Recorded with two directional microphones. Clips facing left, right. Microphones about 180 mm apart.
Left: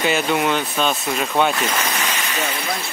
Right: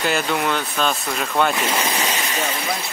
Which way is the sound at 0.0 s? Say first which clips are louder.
Left 2 dB; centre (ahead or behind).